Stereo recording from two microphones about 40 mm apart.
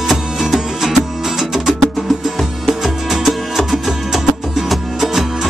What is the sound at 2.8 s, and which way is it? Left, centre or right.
Music, centre.